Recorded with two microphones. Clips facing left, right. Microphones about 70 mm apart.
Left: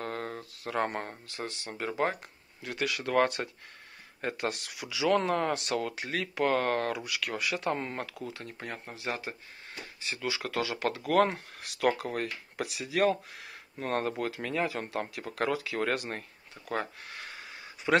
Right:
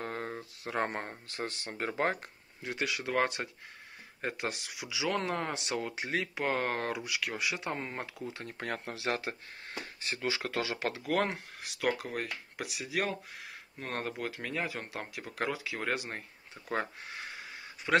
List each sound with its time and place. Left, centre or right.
0.0 s a sound: centre
1.3 s speech: right
2.6 s speech: centre
8.3 s speech: right
8.5 s speech: right
9.1 s speech: right
10.0 s speech: right
11.1 s speech: centre
17.9 s speech: centre